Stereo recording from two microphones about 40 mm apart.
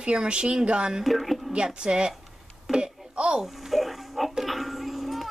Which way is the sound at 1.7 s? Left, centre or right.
Right.